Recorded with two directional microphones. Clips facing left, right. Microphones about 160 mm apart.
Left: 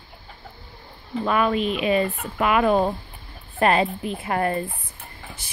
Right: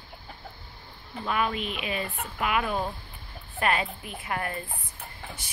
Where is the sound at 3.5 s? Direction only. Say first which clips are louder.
Left 8 dB; 35° left (ahead or behind).